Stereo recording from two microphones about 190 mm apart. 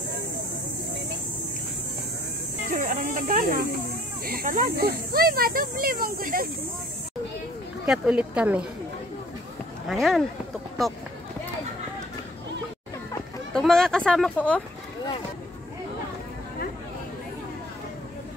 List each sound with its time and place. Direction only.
2.7 s a sound: 45° right (ahead or behind)
4.3 s speech: 50° right (ahead or behind)
7.8 s speech: 5° right (ahead or behind)
9.8 s speech: centre (ahead or behind)
13.5 s speech: 5° left (ahead or behind)